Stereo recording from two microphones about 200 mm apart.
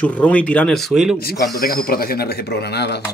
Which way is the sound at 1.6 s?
50° left (ahead or behind).